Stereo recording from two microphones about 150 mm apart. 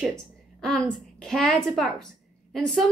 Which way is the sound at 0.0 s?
5° left (ahead or behind).